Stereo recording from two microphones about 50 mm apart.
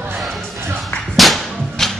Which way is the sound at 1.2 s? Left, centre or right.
Centre.